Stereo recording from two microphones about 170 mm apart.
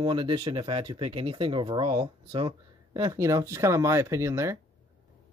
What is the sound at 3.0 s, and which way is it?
Speech, 20° right (ahead or behind).